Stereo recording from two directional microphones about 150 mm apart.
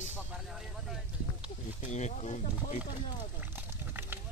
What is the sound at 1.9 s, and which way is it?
Speech, 50° left (ahead or behind).